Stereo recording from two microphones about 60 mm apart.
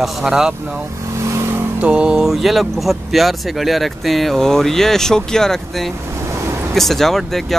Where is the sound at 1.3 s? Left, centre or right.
Right.